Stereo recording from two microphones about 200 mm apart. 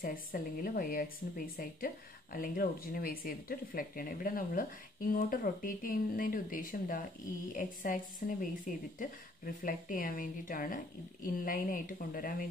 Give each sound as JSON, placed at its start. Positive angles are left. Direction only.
{"t": 0.0, "sound": "a woman's voice", "side_deg": 45}